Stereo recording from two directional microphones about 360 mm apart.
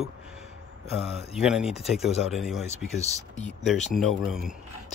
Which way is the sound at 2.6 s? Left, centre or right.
Centre.